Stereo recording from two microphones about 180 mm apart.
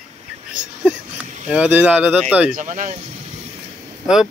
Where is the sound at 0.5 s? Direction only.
5° right (ahead or behind).